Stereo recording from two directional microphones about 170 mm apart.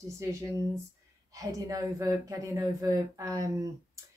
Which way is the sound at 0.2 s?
15° right (ahead or behind).